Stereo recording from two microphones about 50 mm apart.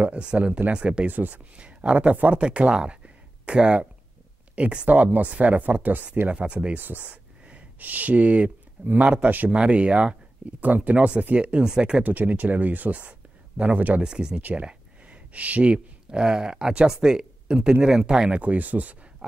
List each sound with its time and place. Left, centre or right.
0.0 s speech: right
1.0 s speech: right
1.6 s speech: right
6.2 s speech: right
7.0 s a sound: right
7.8 s speech: right
9.6 s speech: right
12.0 s speech: right
14.0 s speech: centre
14.4 s speech: right
18.4 s speech: right